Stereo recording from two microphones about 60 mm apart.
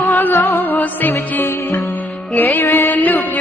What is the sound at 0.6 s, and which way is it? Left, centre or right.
Music, left.